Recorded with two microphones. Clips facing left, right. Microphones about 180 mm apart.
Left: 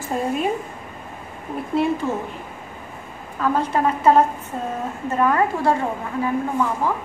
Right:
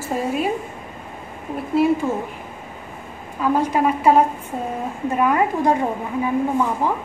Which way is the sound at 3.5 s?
10° right (ahead or behind).